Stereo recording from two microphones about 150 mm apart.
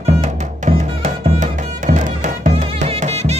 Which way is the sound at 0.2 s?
50° right (ahead or behind).